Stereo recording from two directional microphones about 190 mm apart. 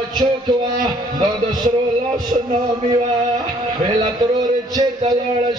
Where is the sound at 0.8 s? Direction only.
20° right (ahead or behind).